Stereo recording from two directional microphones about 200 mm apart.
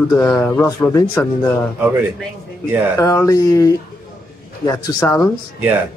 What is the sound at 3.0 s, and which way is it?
A man's voice, 15° left (ahead or behind).